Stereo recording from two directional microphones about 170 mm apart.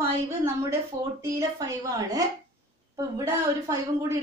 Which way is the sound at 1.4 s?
20° right (ahead or behind).